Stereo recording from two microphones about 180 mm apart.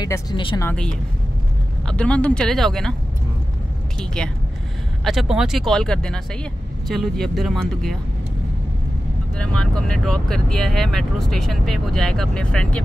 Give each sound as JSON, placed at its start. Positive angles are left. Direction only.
{"t": 0.0, "sound": "speech", "side_deg": 20}
{"t": 0.6, "sound": "speech", "side_deg": 10}
{"t": 4.0, "sound": "speech", "side_deg": 5}
{"t": 9.4, "sound": "speech", "side_deg": 5}